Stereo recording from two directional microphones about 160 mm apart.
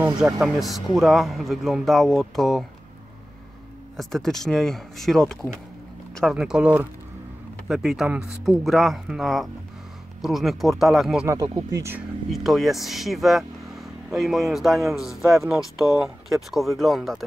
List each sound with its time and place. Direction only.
0.2 s speech: centre (ahead or behind)
3.9 s speech: centre (ahead or behind)
11.2 s speech: 20° right (ahead or behind)
12.3 s speech: centre (ahead or behind)